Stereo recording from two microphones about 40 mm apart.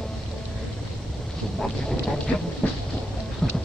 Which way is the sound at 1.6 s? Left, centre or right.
Centre.